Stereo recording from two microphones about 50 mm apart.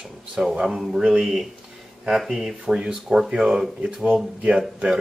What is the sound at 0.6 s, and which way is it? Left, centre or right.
Speech, centre.